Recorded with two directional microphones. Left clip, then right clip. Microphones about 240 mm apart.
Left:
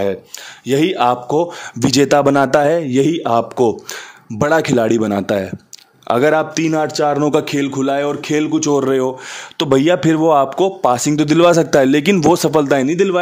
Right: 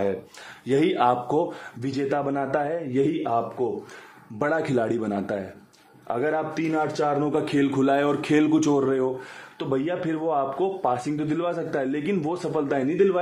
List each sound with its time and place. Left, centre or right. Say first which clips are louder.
0.7 s speech: left 7 dB; left
1.8 s a man's voice: left 14 dB; left
6.0 s a man's voice: left 12 dB; left
7.5 s speech: left 4 dB; left
8.8 s speech: left 8 dB; left
9.6 s a man's voice: left 13 dB; left